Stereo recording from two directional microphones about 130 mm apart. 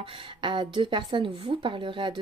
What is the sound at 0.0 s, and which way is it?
A woman's voice, 40° right (ahead or behind).